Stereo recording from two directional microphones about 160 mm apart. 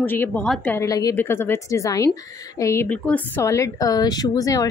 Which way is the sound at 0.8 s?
20° left (ahead or behind).